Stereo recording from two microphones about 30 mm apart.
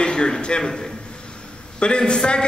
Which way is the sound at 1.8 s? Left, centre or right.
Left.